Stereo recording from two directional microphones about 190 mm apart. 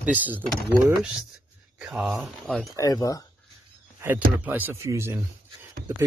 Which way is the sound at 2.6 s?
20° left (ahead or behind).